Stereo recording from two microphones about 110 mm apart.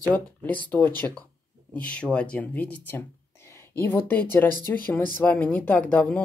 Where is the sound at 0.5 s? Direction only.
15° left (ahead or behind).